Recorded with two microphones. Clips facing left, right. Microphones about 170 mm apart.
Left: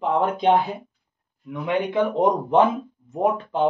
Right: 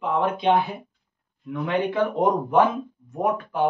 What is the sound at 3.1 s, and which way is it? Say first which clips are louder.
Speech: left 2 dB; 25° left (ahead or behind).